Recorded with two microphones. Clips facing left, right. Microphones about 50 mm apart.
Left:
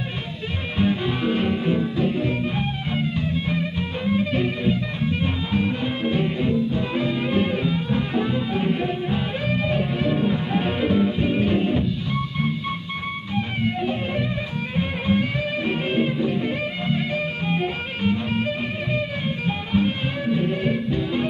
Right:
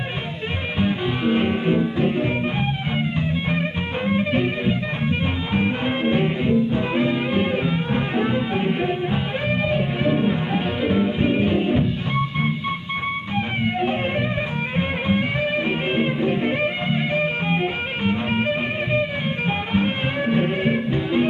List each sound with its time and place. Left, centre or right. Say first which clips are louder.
0.8 s music: right 1 dB; centre
15.0 s music: even; right